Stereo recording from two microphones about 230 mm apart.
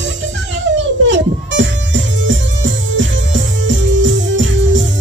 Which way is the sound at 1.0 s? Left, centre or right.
Right.